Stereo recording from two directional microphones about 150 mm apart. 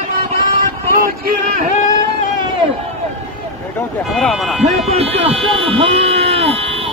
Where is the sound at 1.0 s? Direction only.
75° right (ahead or behind).